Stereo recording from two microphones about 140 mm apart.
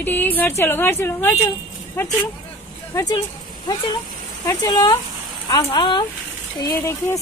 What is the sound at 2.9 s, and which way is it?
Speech, 25° left (ahead or behind).